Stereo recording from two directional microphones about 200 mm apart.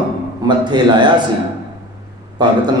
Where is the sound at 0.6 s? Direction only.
20° right (ahead or behind).